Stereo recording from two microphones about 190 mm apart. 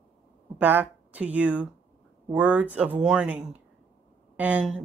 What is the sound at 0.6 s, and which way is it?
Speech, 10° right (ahead or behind).